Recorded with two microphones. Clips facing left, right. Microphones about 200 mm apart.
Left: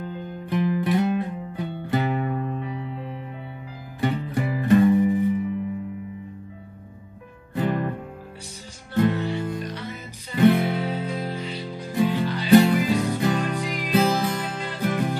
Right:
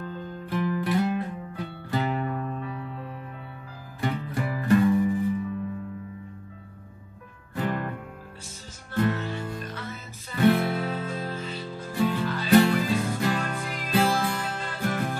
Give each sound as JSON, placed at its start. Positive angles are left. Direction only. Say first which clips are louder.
{"t": 0.0, "sound": "music", "louder": "left 2 dB", "side_deg": 20}
{"t": 7.5, "sound": "music", "louder": "left 4 dB", "side_deg": 20}
{"t": 8.9, "sound": "music", "louder": "left 4 dB", "side_deg": 15}